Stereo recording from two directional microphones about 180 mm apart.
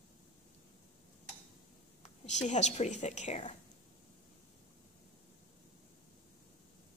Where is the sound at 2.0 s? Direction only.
40° left (ahead or behind).